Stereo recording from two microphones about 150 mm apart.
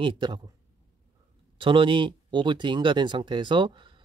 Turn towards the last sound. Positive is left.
turn(degrees=-30)  # may be behind; listen again after turning